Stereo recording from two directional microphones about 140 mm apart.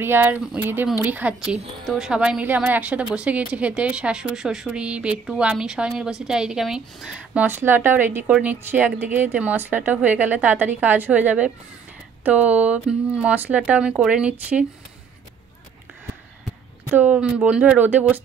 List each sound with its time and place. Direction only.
0.0 s speech: 15° right (ahead or behind)
16.9 s speech: 10° right (ahead or behind)